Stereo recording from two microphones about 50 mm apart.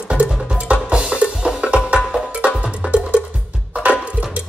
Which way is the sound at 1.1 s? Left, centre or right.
Centre.